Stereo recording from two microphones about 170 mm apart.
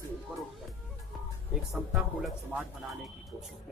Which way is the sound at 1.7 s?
Centre (ahead or behind).